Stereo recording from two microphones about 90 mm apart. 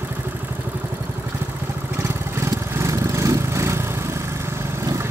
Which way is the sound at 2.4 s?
30° right (ahead or behind).